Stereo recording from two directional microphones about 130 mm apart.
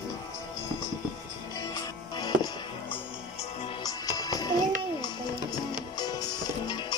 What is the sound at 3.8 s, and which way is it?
Music, 30° left (ahead or behind).